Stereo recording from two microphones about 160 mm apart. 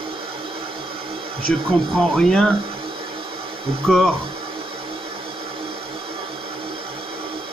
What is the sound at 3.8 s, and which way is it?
Speech, centre (ahead or behind).